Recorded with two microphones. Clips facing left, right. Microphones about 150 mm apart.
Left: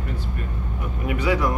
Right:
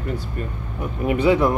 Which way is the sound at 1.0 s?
25° right (ahead or behind).